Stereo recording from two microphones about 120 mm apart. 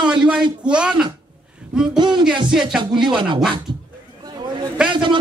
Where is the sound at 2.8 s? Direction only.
40° right (ahead or behind).